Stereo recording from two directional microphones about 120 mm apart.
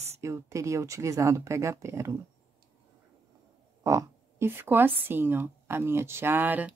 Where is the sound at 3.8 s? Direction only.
25° right (ahead or behind).